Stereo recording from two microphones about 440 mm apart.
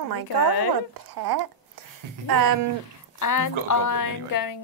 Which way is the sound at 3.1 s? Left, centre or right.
Left.